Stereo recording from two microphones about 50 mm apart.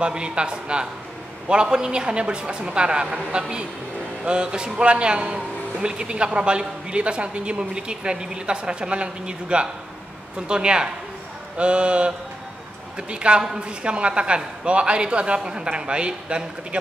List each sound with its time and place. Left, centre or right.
0.0 s a man's voice: centre